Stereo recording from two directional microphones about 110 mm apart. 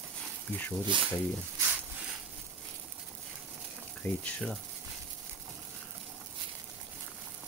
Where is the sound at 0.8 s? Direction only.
45° right (ahead or behind).